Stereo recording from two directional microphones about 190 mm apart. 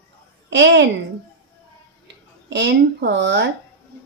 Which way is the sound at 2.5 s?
70° right (ahead or behind).